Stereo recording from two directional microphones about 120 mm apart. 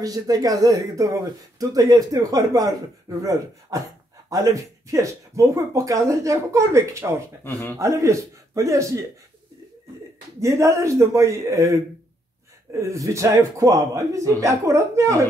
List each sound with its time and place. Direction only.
0.0 s speech: 30° right (ahead or behind)
10.4 s speech: 25° right (ahead or behind)